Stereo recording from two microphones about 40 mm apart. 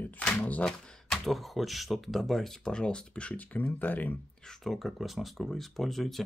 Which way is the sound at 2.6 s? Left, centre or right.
Left.